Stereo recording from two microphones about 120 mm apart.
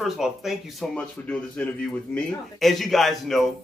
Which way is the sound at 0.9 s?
10° left (ahead or behind).